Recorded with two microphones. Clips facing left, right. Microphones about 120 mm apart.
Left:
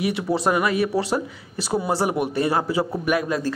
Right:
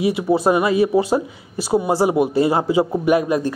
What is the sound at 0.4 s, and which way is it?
Speech, 25° right (ahead or behind).